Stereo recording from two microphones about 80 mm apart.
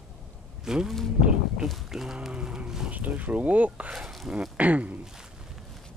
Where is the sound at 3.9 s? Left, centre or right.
Centre.